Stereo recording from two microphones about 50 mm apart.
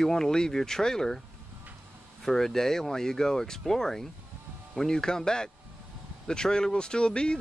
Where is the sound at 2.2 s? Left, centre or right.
Centre.